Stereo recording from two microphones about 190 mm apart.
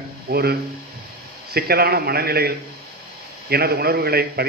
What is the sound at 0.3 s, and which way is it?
A man's voice, 55° right (ahead or behind).